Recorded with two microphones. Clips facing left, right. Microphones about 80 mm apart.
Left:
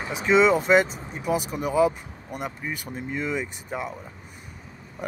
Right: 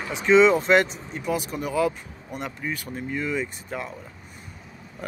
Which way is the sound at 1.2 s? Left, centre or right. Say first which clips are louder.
Left 2 dB; left.